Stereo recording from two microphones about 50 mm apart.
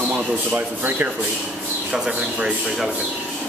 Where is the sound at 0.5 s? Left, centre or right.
Right.